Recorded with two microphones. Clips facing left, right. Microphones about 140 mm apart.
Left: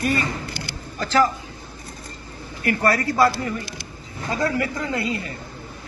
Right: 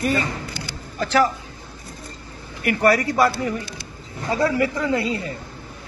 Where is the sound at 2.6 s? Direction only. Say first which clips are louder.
Right 3 dB; 15° right (ahead or behind).